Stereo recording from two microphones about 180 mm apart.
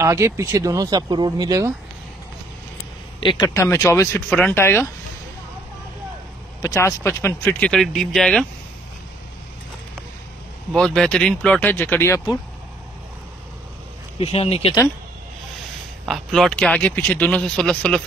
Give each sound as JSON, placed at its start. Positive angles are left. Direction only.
{"t": 0.0, "sound": "speech", "side_deg": -15}
{"t": 3.2, "sound": "speech", "side_deg": 25}
{"t": 3.4, "sound": "speech", "side_deg": 15}
{"t": 6.6, "sound": "speech", "side_deg": 15}
{"t": 10.7, "sound": "speech", "side_deg": 5}
{"t": 14.2, "sound": "speech", "side_deg": 35}
{"t": 16.1, "sound": "speech", "side_deg": 0}